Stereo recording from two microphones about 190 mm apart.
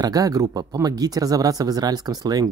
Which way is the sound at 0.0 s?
20° right (ahead or behind).